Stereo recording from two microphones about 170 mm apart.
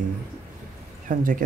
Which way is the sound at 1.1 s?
55° right (ahead or behind).